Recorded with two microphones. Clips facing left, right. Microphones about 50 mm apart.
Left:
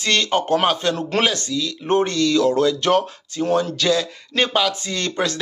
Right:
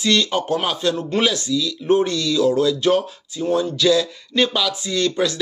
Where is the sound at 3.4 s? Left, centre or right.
Left.